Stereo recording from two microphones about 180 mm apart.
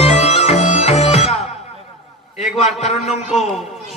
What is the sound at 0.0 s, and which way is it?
Bagpipes, 35° left (ahead or behind).